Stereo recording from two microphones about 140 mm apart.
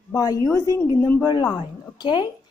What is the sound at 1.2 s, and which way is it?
Speech, 30° left (ahead or behind).